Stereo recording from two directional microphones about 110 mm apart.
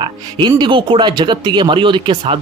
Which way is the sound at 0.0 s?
45° right (ahead or behind).